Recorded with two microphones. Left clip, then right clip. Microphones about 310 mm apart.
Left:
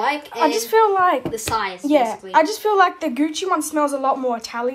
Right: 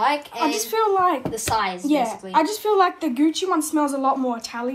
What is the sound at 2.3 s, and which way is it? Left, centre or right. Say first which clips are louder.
A woman's voice: left 3 dB; left.